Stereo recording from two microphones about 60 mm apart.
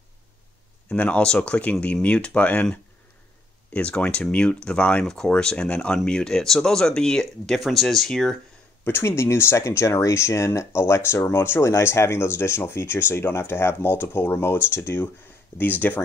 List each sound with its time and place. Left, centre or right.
0.8 s speech: left
8.8 s speech: left